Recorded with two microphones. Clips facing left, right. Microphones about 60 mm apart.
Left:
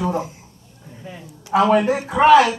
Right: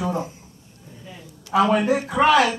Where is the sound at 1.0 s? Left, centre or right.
Left.